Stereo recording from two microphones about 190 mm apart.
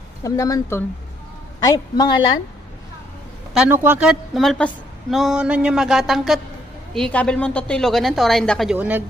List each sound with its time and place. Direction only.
0.2 s a woman's voice: 15° left (ahead or behind)
3.5 s a woman's voice: 10° right (ahead or behind)